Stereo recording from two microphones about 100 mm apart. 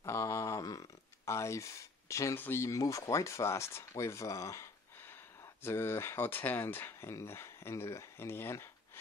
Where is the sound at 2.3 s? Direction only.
25° left (ahead or behind).